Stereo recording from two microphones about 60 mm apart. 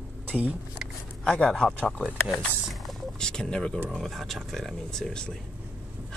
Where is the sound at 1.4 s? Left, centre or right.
Centre.